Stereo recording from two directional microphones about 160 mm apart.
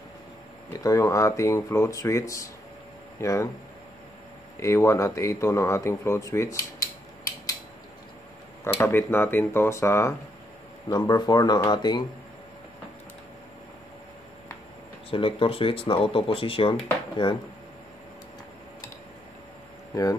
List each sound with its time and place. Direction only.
0.7 s speech: 20° left (ahead or behind)
4.6 s speech: 15° left (ahead or behind)
8.7 s speech: 15° left (ahead or behind)
15.0 s speech: 35° left (ahead or behind)
19.9 s speech: 25° left (ahead or behind)